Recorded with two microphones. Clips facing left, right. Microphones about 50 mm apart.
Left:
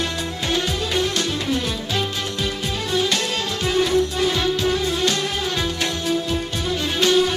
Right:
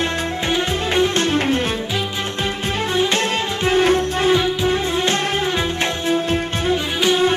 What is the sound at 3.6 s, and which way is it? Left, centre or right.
Music, right.